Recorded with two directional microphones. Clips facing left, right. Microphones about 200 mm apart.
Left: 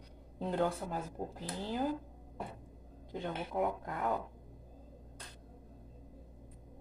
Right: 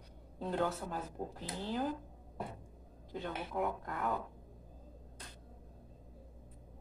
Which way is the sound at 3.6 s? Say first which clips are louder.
Left 2 dB; 10° left (ahead or behind).